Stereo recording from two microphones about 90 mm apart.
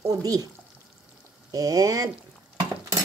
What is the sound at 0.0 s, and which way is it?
Speech, 40° right (ahead or behind).